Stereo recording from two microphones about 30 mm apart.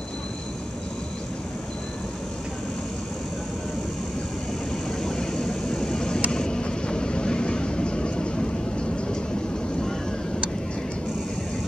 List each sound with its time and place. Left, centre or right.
5.0 s vehicle: left